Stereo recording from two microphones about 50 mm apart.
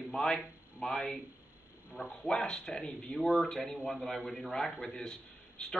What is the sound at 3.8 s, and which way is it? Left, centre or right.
Speech, left.